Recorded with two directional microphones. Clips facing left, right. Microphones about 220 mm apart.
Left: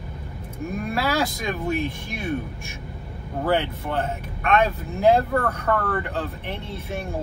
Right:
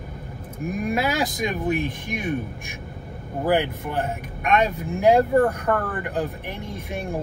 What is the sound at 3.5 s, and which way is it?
Speech, 15° right (ahead or behind).